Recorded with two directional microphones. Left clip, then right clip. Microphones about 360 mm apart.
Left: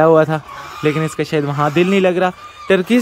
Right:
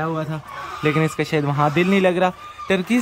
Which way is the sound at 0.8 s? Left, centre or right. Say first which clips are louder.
Left 3 dB; centre.